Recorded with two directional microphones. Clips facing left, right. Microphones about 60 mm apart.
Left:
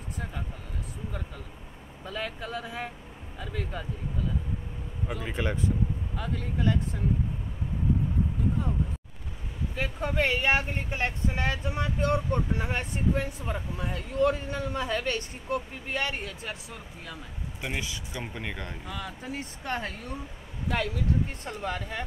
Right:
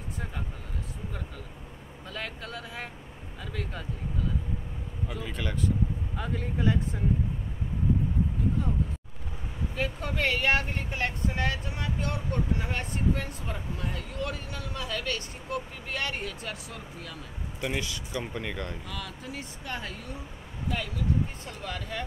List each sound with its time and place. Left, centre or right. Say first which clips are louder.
2.0 s speech: left 3 dB; centre
5.2 s speech: left 2 dB; left
6.1 s speech: even; centre
9.8 s speech: left 2 dB; centre
12.5 s speech: left 1 dB; centre
14.2 s speech: left 11 dB; left
15.9 s speech: left 2 dB; centre; by 20.2 s left
21.5 s speech: left 3 dB; left